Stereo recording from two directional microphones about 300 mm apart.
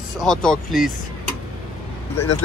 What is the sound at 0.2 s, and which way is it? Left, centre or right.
Speech, centre.